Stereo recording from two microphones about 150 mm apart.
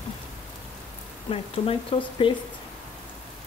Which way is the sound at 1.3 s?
40° left (ahead or behind).